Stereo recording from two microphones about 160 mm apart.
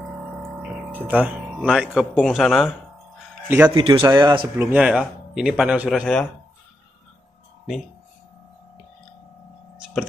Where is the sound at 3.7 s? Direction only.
30° right (ahead or behind).